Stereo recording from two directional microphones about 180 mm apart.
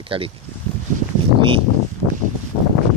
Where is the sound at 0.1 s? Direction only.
30° right (ahead or behind).